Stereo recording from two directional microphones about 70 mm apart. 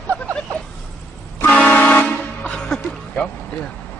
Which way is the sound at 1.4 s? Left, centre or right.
Centre.